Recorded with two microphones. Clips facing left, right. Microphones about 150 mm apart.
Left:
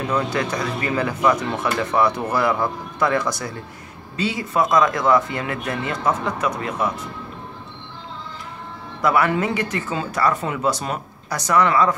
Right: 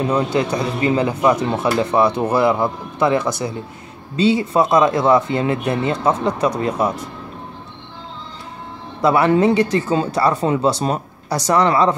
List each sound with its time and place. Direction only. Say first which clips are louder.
0.0 s speech: right 4 dB; 25° right (ahead or behind)
9.0 s speech: right 5 dB; 25° right (ahead or behind)